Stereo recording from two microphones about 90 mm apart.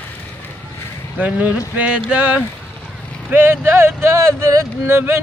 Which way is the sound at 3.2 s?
25° right (ahead or behind).